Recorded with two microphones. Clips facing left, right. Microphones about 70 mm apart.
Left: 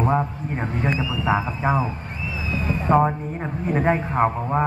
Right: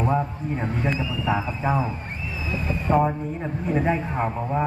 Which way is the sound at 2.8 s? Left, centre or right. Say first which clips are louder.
Left 3 dB; left.